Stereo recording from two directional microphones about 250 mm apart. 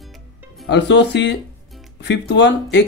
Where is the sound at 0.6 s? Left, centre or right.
Left.